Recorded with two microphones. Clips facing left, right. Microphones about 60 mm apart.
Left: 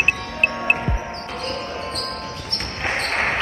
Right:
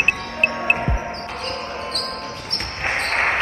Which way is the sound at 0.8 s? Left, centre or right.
Centre.